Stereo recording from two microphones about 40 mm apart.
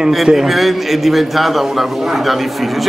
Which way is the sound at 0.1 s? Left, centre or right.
Centre.